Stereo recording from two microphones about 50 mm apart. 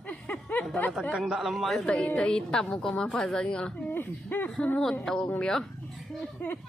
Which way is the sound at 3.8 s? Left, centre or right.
Left.